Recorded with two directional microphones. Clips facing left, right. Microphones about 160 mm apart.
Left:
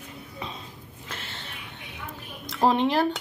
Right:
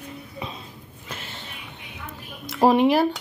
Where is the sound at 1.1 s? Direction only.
15° right (ahead or behind).